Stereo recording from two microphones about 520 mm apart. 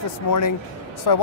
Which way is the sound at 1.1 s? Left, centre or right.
Left.